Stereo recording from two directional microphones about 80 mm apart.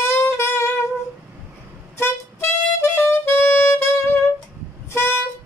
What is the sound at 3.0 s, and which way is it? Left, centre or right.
Saxophone, left.